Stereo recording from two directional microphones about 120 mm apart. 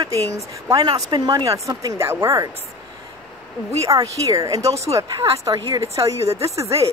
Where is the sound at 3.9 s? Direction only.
30° right (ahead or behind).